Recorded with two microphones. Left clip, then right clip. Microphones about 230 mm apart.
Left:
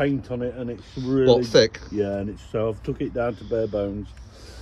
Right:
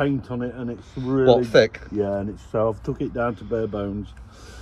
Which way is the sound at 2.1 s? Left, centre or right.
Centre.